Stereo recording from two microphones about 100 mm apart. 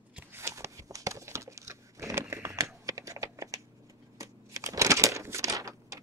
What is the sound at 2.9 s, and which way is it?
Typing, 35° right (ahead or behind).